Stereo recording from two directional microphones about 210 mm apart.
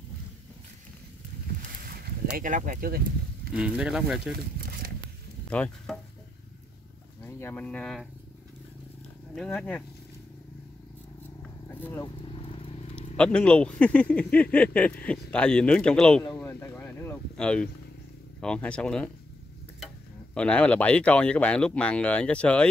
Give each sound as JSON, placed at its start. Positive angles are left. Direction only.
{"t": 1.8, "sound": "a sound", "side_deg": -45}
{"t": 2.3, "sound": "speech", "side_deg": -40}
{"t": 3.5, "sound": "speech", "side_deg": -5}
{"t": 4.6, "sound": "a sound", "side_deg": -45}
{"t": 5.5, "sound": "stir", "side_deg": 5}
{"t": 7.2, "sound": "speech", "side_deg": 10}
{"t": 9.3, "sound": "speech", "side_deg": 0}
{"t": 11.4, "sound": "a sound", "side_deg": 10}
{"t": 12.2, "sound": "vehicle", "side_deg": 25}
{"t": 13.1, "sound": "speech", "side_deg": 5}
{"t": 20.3, "sound": "speech", "side_deg": 5}